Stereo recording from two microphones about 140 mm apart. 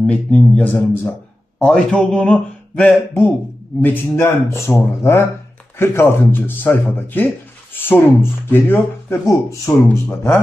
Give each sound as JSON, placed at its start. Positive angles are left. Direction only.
{"t": 0.0, "sound": "speech", "side_deg": 10}